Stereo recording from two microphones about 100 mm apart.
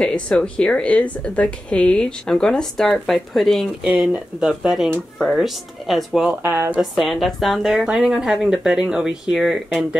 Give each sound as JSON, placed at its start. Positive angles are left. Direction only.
{"t": 0.0, "sound": "a woman's voice", "side_deg": 10}
{"t": 6.2, "sound": "speech", "side_deg": -25}
{"t": 6.8, "sound": "speech", "side_deg": 0}